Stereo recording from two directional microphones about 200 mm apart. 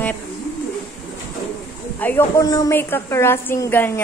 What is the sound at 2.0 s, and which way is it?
A woman's voice, 15° left (ahead or behind).